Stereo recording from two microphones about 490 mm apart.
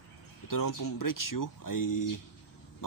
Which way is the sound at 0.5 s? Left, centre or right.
Left.